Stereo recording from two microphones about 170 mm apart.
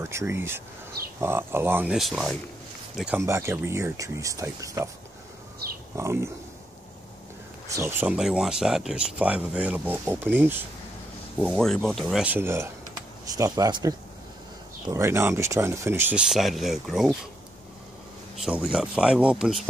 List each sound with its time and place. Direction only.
0.0 s speech: 15° right (ahead or behind)
2.0 s speech: centre (ahead or behind)
3.2 s speech: 15° right (ahead or behind)
5.9 s speech: 15° right (ahead or behind)
7.7 s speech: 15° right (ahead or behind)
11.3 s speech: 5° left (ahead or behind)
18.3 s speech: centre (ahead or behind)